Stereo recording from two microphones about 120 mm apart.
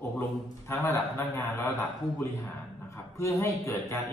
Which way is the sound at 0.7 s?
25° left (ahead or behind).